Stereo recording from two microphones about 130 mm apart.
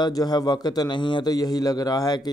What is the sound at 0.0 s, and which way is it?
A man's voice, 30° left (ahead or behind).